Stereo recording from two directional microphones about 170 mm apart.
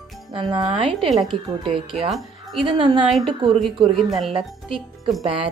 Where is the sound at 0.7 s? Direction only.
30° right (ahead or behind).